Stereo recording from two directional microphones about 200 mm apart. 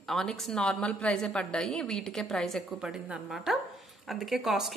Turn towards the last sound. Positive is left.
turn(degrees=0)  # may be behind; listen again after turning